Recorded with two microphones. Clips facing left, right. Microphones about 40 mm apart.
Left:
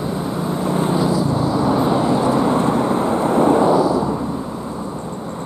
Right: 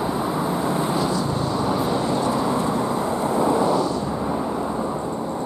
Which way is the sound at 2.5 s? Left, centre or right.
Left.